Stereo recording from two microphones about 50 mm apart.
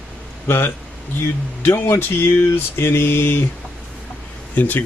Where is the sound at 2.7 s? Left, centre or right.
Left.